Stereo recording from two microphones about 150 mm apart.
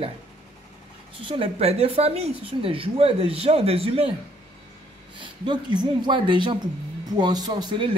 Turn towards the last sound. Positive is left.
turn(degrees=-30)  # may be behind; listen again after turning